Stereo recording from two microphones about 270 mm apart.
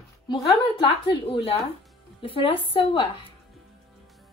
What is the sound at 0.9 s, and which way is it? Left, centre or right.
A woman's voice, centre.